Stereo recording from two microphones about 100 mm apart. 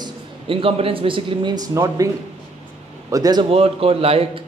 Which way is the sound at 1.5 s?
35° right (ahead or behind).